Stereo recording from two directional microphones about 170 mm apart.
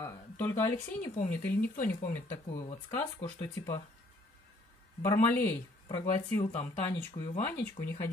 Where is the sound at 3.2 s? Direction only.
30° left (ahead or behind).